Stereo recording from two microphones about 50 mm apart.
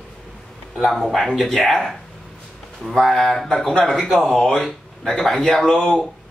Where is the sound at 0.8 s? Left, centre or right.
Centre.